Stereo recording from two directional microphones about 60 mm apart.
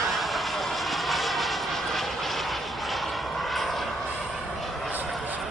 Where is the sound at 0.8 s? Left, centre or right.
Centre.